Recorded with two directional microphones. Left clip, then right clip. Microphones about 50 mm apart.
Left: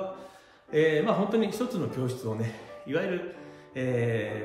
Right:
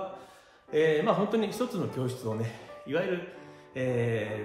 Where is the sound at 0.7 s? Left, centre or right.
Right.